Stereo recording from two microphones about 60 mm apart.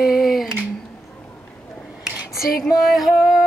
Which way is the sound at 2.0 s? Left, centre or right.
Centre.